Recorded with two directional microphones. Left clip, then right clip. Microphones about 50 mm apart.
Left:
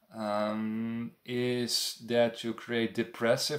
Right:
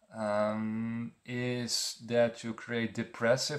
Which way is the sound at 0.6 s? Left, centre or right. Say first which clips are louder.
Left 1 dB; centre.